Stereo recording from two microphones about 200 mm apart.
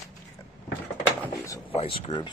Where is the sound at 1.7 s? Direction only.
30° left (ahead or behind).